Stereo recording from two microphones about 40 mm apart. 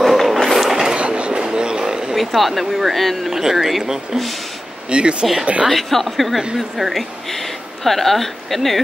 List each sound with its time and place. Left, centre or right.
0.0 s train: centre
0.5 s a sound: centre
0.9 s a sound: right
2.1 s speech: centre
3.3 s speech: centre
4.8 s speech: right
5.7 s a woman's voice: centre